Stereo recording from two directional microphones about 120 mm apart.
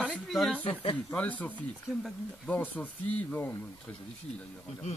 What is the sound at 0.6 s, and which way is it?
Speech, 50° left (ahead or behind).